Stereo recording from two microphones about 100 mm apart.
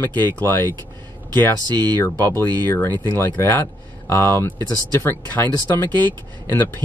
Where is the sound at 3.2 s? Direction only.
20° left (ahead or behind).